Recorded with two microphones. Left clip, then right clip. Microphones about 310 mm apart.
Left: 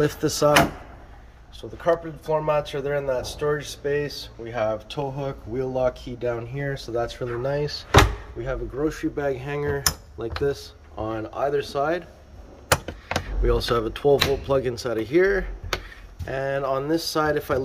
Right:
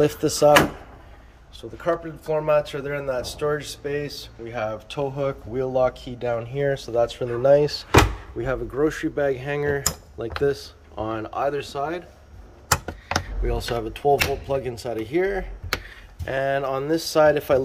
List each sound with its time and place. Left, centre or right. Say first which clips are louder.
0.0 s speech: right 3 dB; centre
7.2 s speech: right 9 dB; centre
13.1 s speech: left 2 dB; centre